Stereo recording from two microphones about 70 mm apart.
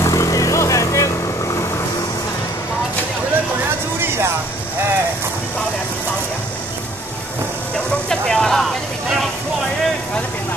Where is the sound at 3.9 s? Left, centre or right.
Right.